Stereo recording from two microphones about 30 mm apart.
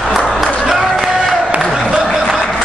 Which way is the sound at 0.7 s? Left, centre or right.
Centre.